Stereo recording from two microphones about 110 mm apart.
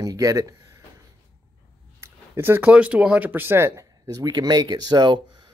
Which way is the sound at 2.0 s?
20° right (ahead or behind).